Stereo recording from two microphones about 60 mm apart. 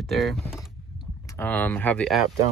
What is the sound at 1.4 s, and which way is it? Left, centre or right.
Speech, left.